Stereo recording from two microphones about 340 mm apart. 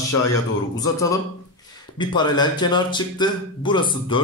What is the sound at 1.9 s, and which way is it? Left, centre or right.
Speech, centre.